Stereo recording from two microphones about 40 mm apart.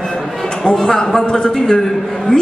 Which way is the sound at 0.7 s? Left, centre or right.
Centre.